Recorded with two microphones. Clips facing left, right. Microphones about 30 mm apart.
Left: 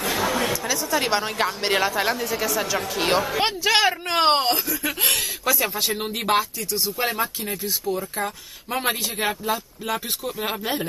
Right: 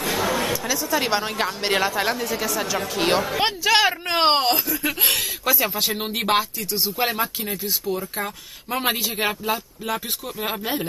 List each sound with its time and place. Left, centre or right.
0.0 s a woman's voice: centre
4.1 s speech: centre
6.0 s speech: right
7.1 s speech: centre
9.8 s speech: centre